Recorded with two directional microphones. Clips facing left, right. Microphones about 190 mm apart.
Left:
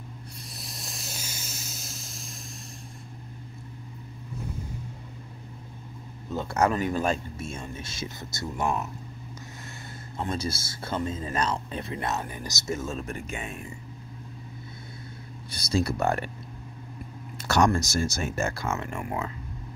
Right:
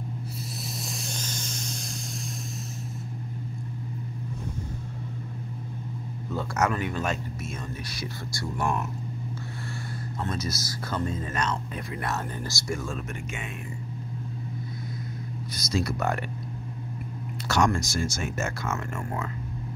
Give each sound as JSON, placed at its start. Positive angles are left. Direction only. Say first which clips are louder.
{"t": 0.7, "sound": "a sound", "louder": "right 6 dB", "side_deg": 0}
{"t": 6.3, "sound": "speech", "louder": "left 2 dB", "side_deg": 30}
{"t": 10.3, "sound": "speech", "louder": "even", "side_deg": 30}
{"t": 13.1, "sound": "speech", "louder": "left 1 dB", "side_deg": 35}
{"t": 15.5, "sound": "speech", "louder": "left 2 dB", "side_deg": 30}
{"t": 17.5, "sound": "speech", "louder": "left 2 dB", "side_deg": 40}
{"t": 18.8, "sound": "speech", "louder": "left 1 dB", "side_deg": 15}